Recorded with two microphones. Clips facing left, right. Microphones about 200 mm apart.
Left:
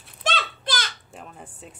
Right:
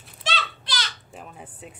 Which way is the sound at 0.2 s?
50° left (ahead or behind).